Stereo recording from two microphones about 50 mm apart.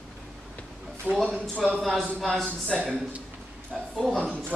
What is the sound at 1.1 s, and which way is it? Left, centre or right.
Speech, right.